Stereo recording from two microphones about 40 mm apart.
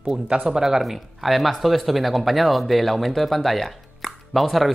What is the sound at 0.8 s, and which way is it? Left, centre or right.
Speech, centre.